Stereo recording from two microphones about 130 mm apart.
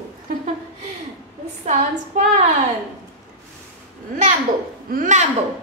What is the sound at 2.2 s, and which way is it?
Speech, 70° right (ahead or behind).